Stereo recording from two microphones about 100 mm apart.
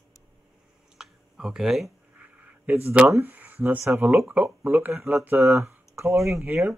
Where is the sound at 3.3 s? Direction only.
15° right (ahead or behind).